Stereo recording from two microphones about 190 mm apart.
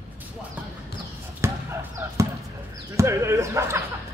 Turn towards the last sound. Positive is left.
turn(degrees=-15)  # may be behind; listen again after turning